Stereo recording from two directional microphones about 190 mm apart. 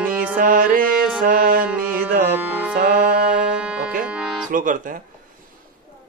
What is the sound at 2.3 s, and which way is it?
Music, 10° right (ahead or behind).